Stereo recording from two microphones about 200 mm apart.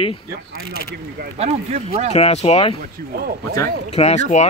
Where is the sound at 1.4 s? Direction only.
35° right (ahead or behind).